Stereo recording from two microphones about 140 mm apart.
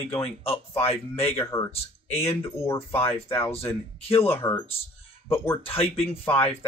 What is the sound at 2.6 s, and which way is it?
Speech, 20° left (ahead or behind).